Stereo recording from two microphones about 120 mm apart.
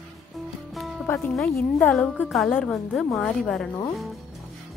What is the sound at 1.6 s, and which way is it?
A woman's voice, 10° left (ahead or behind).